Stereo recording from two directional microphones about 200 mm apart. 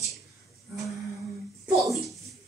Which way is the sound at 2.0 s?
Centre (ahead or behind).